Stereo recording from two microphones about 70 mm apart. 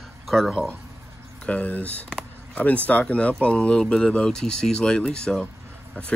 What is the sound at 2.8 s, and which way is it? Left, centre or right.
Speech, centre.